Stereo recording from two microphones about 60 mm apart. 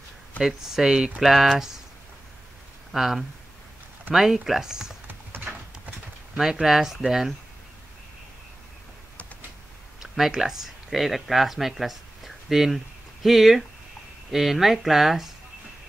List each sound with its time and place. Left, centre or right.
0.4 s speech: centre
2.9 s speech: centre
5.0 s a sound: right
6.3 s speech: centre
10.1 s speech: centre